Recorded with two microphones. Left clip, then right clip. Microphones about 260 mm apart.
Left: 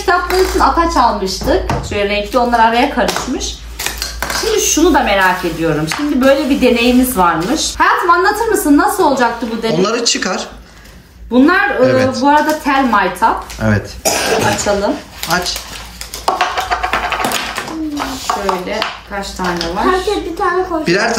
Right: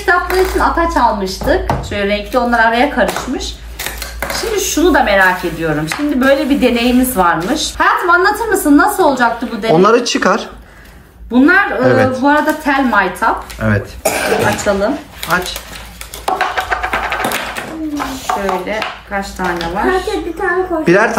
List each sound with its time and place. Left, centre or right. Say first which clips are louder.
0.0 s chopping: even; centre
11.4 s chopping: right 1 dB; centre
16.3 s music: left 1 dB; centre
17.9 s a sound: right 1 dB; centre
20.8 s chopping: right 6 dB; centre